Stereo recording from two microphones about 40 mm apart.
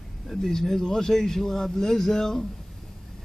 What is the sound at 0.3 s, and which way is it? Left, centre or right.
Speech, centre.